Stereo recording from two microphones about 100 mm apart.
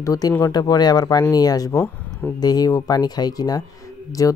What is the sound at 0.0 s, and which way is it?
Speech, 35° left (ahead or behind).